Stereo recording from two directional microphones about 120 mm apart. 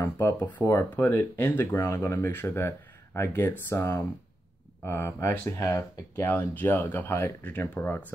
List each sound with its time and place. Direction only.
0.0 s speech: 20° left (ahead or behind)